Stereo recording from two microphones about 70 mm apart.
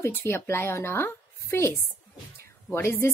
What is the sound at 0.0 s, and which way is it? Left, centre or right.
Speech, left.